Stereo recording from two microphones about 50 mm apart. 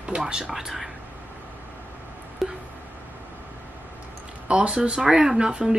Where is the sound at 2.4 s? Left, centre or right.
Centre.